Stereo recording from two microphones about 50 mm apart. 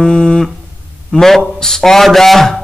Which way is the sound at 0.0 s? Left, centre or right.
Centre.